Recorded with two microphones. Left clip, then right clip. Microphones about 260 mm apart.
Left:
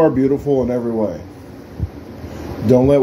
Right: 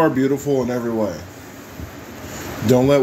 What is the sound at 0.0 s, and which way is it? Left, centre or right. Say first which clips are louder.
Speech: left 3 dB; centre.